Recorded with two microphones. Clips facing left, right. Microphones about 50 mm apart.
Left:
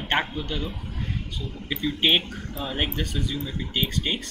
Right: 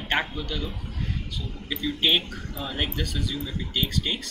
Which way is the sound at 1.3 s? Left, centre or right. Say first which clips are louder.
Left 1 dB; left.